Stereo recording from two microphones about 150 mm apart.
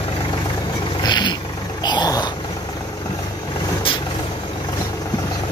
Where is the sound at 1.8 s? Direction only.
30° left (ahead or behind).